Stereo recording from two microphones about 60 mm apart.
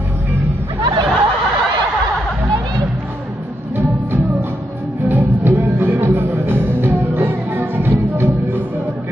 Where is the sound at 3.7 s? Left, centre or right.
Right.